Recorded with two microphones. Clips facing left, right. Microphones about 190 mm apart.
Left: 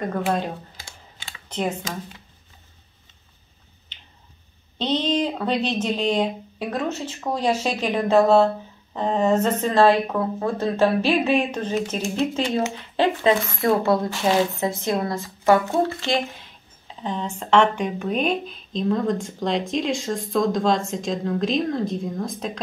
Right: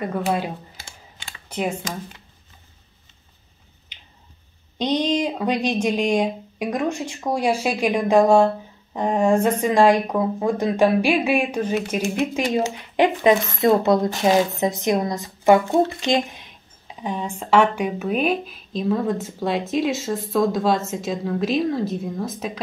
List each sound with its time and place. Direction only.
1.5 s speech: 10° right (ahead or behind)
4.7 s speech: 10° right (ahead or behind)